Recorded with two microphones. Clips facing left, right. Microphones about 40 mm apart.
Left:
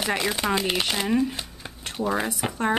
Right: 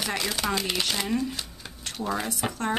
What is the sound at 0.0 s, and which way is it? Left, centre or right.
Speech, left.